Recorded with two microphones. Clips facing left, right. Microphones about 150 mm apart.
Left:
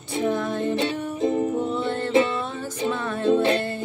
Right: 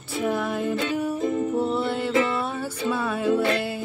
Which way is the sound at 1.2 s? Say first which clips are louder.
Left 7 dB; 25° left (ahead or behind).